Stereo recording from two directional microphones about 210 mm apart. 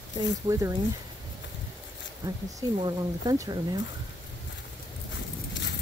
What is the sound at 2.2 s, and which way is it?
Speech, 15° right (ahead or behind).